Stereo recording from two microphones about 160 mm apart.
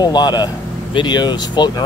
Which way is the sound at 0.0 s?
25° left (ahead or behind).